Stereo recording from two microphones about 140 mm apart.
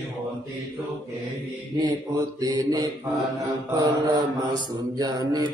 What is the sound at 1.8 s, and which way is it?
Mantra, 30° right (ahead or behind).